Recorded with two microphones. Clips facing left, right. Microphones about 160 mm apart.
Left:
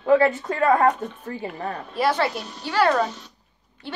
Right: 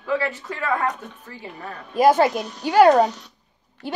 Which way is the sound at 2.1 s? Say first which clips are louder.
Right 6 dB; 45° right (ahead or behind).